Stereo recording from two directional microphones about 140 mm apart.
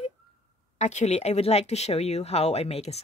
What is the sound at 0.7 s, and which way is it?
Speech, 55° left (ahead or behind).